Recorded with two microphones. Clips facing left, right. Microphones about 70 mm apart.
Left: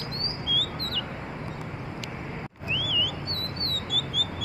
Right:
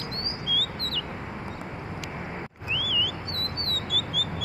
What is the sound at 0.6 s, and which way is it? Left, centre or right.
Bird, centre.